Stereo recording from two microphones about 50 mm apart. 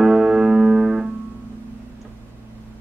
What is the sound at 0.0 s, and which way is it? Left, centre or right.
Music, centre.